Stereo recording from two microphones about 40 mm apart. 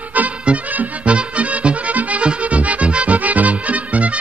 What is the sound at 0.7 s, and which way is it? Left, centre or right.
Music, right.